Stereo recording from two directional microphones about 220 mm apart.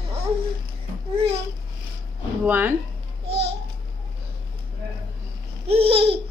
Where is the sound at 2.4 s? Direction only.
10° right (ahead or behind).